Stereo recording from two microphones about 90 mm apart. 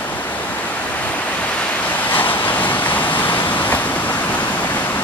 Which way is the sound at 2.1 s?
20° left (ahead or behind).